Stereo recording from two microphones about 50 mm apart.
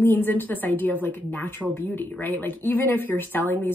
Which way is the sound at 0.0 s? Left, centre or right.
Left.